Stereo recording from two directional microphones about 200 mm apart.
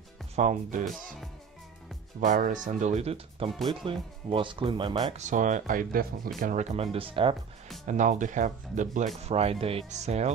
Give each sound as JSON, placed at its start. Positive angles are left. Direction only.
{"t": 0.4, "sound": "speech", "side_deg": -40}
{"t": 0.8, "sound": "music", "side_deg": 0}
{"t": 2.1, "sound": "speech", "side_deg": -40}
{"t": 3.4, "sound": "music", "side_deg": 0}
{"t": 3.8, "sound": "speech", "side_deg": -25}
{"t": 5.1, "sound": "speech", "side_deg": -40}
{"t": 7.8, "sound": "speech", "side_deg": -40}